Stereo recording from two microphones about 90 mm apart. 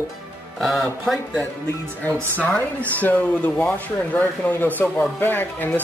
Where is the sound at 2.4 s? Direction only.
15° left (ahead or behind).